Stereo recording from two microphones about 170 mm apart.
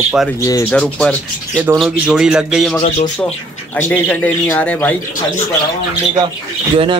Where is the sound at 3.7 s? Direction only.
10° left (ahead or behind).